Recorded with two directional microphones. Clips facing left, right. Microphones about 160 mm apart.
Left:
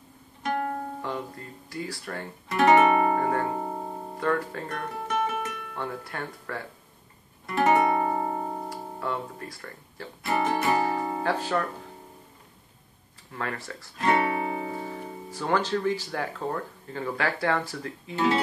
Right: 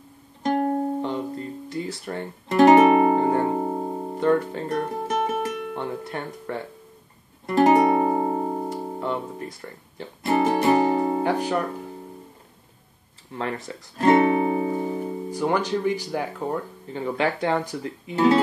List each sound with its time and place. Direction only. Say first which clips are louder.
0.4 s music: right 7 dB; 35° right (ahead or behind)
2.5 s guitar: right 5 dB; 40° right (ahead or behind); by 4.8 s 20° right (ahead or behind)
5.0 s music: right 4 dB; 40° right (ahead or behind)
5.8 s speech: right 4 dB; 20° right (ahead or behind)
7.4 s music: right 5 dB; 40° right (ahead or behind); by 10.0 s 20° right (ahead or behind)
10.2 s speech: right 5 dB; 40° right (ahead or behind)
10.6 s music: right 6 dB; 25° right (ahead or behind)
11.2 s speech: right 3 dB; 15° right (ahead or behind)
13.3 s speech: right 4 dB; 25° right (ahead or behind)
14.1 s music: right 8 dB; 30° right (ahead or behind)
15.3 s speech: right 2 dB; 15° right (ahead or behind)
18.1 s speech: right 6 dB; 40° right (ahead or behind)